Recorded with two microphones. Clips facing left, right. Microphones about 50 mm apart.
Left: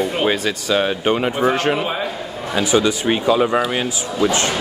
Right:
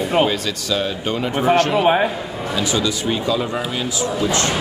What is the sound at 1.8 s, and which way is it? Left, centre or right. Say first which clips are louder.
Speech: right 7 dB; right.